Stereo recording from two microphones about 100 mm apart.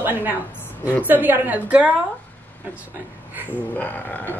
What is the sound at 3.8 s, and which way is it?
Speech, 15° left (ahead or behind).